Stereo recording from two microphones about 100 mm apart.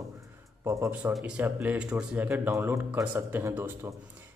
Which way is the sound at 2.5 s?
30° right (ahead or behind).